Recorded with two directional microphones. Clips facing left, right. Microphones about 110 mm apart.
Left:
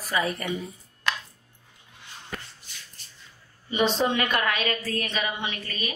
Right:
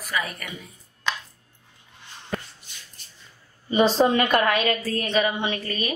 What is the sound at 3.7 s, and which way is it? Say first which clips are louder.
Speech: right 5 dB; 35° right (ahead or behind).